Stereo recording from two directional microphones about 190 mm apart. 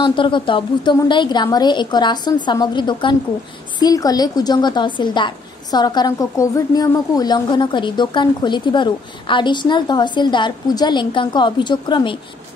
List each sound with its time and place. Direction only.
0.0 s a woman's voice: 25° left (ahead or behind)